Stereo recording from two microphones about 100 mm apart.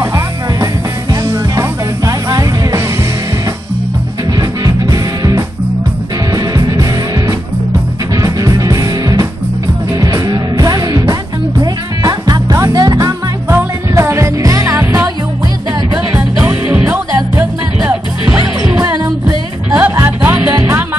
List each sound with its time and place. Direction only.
0.0 s music: 30° right (ahead or behind)
4.4 s music: 40° right (ahead or behind)
16.3 s music: 25° right (ahead or behind)
18.4 s music: 40° right (ahead or behind)
19.7 s music: 25° right (ahead or behind)